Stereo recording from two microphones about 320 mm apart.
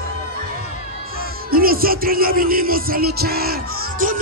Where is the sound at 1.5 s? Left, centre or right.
Right.